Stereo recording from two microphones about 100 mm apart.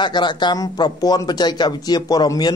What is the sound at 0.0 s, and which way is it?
Speech, 50° left (ahead or behind).